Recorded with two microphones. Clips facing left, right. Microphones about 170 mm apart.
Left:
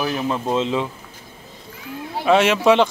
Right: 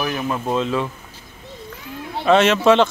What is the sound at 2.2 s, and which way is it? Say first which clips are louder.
Speech: right 1 dB; 10° left (ahead or behind).